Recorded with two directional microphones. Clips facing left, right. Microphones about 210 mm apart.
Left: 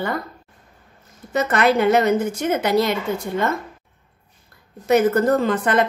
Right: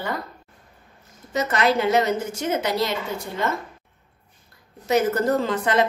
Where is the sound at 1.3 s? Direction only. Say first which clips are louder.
Left 3 dB; 55° left (ahead or behind).